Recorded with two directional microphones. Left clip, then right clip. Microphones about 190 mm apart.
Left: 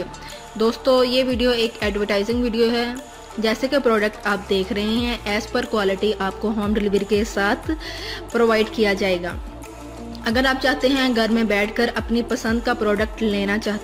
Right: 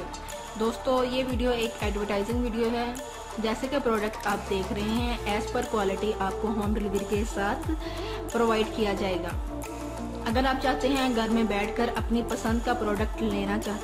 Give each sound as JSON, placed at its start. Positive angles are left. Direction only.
{"t": 0.6, "sound": "a woman's voice", "side_deg": 20}
{"t": 10.2, "sound": "speech", "side_deg": 15}